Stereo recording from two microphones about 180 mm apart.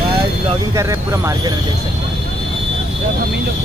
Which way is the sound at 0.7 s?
15° right (ahead or behind).